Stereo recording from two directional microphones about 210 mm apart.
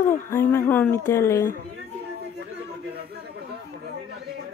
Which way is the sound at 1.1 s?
15° left (ahead or behind).